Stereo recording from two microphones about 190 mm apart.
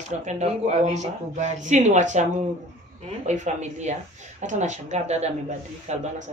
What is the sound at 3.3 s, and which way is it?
Speech, 35° right (ahead or behind).